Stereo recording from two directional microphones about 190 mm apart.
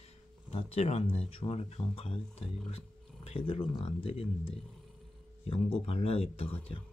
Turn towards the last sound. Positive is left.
turn(degrees=30)  # may be behind; listen again after turning